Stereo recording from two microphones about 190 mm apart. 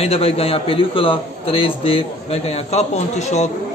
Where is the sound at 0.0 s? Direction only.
30° left (ahead or behind).